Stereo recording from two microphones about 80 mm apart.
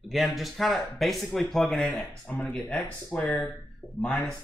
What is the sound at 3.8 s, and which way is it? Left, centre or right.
Speech, left.